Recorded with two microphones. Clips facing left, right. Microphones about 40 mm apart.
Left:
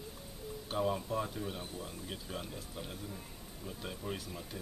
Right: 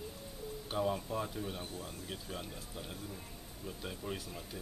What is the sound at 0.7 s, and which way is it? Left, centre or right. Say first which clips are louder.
Speech: left 1 dB; centre.